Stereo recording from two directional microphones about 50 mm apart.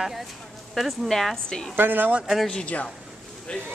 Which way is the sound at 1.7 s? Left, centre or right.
Right.